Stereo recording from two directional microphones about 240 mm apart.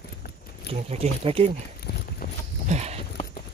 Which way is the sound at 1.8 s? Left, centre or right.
Left.